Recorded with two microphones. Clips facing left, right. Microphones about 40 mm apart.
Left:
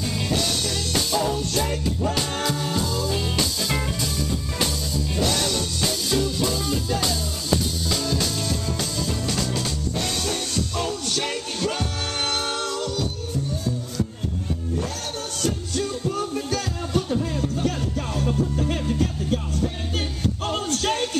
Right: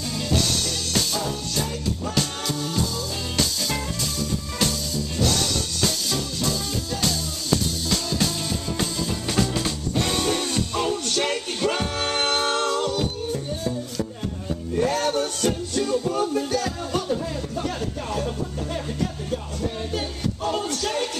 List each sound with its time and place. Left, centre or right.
0.9 s music: centre
14.8 s music: right
16.2 s music: right
20.4 s music: left